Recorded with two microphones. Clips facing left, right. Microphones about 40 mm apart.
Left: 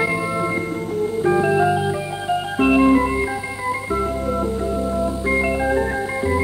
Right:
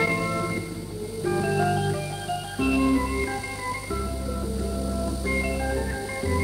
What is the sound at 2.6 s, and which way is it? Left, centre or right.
Organ, left.